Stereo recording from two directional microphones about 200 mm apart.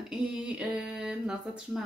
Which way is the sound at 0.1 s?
5° right (ahead or behind).